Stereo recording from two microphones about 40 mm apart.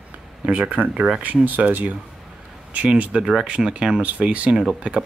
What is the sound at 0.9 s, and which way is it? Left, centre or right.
Speech, centre.